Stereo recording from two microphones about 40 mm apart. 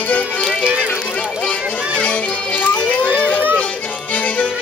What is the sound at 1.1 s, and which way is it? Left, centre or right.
Run, left.